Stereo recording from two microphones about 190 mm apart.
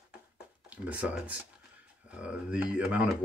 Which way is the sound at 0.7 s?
5° right (ahead or behind).